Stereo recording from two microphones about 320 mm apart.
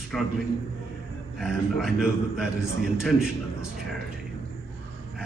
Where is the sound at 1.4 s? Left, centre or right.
Centre.